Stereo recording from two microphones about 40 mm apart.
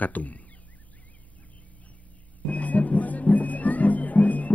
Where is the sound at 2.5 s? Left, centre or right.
Left.